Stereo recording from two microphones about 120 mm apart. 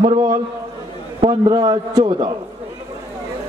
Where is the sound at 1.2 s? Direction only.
45° right (ahead or behind).